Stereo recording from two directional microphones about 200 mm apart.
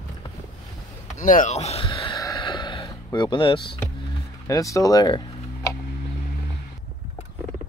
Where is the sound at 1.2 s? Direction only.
40° left (ahead or behind); by 3.8 s 25° left (ahead or behind).